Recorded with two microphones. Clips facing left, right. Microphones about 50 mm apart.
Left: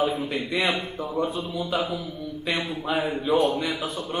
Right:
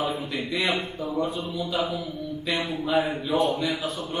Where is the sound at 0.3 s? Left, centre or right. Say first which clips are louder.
Left 1 dB; left.